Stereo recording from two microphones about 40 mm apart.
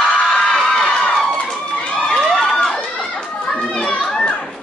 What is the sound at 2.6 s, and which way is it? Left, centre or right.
Run, left.